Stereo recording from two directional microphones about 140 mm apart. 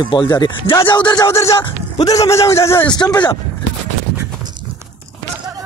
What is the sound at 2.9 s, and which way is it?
Speech, 30° left (ahead or behind).